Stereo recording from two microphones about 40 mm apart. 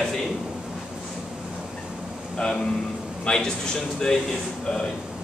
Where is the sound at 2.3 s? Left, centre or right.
Centre.